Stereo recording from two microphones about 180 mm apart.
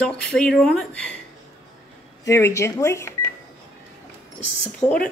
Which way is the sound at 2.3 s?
15° left (ahead or behind).